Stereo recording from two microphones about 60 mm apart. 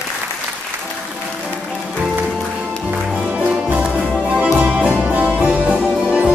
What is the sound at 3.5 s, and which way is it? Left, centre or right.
Music, centre.